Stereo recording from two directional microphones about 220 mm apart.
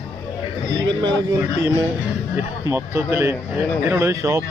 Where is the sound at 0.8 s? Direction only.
20° right (ahead or behind).